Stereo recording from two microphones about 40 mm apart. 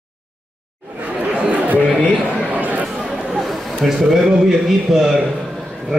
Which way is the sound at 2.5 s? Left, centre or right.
Right.